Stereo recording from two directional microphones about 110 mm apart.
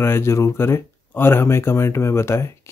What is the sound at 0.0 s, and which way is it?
Speech, 25° left (ahead or behind).